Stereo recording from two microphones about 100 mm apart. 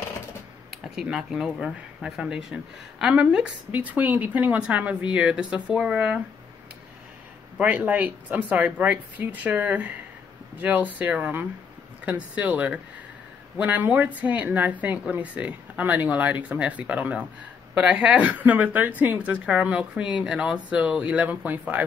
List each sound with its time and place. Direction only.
0.9 s a woman's voice: 5° right (ahead or behind)
7.5 s a woman's voice: 15° right (ahead or behind)